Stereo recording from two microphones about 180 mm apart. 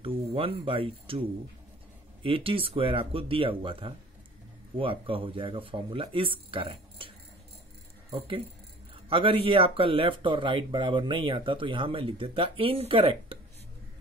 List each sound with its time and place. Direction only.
0.0 s speech: 30° right (ahead or behind)
2.2 s speech: 30° right (ahead or behind)
8.9 s speech: 30° right (ahead or behind)